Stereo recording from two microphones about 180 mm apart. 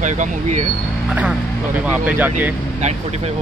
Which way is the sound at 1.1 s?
5° right (ahead or behind).